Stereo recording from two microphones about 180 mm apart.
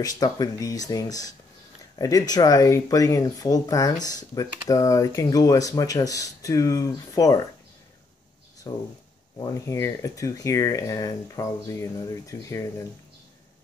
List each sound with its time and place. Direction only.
0.0 s speech: 20° left (ahead or behind)
8.6 s speech: 20° left (ahead or behind)